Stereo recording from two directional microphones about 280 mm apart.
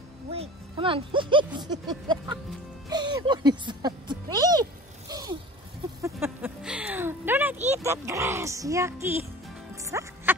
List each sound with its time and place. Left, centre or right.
0.3 s speech: centre
2.9 s a sound: centre
9.8 s music: centre